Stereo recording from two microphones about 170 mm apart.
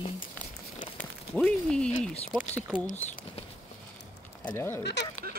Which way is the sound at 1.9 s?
40° left (ahead or behind).